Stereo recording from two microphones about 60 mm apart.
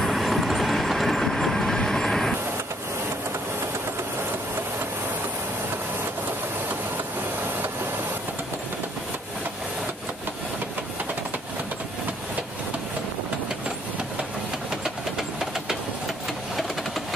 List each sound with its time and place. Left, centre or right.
0.0 s train: centre